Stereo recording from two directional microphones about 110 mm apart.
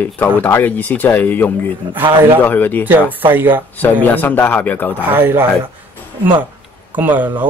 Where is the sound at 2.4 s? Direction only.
15° left (ahead or behind).